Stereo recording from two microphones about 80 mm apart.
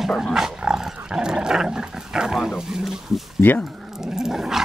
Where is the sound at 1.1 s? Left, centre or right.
Centre.